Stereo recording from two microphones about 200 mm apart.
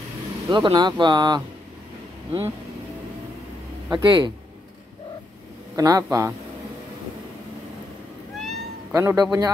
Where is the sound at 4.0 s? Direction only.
25° right (ahead or behind).